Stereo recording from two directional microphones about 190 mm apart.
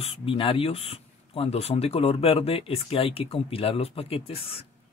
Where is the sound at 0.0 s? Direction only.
30° left (ahead or behind).